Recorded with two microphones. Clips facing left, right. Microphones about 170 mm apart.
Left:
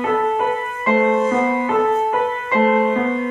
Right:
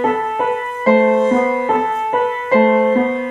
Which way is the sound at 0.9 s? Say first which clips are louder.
Right 4 dB; 35° right (ahead or behind).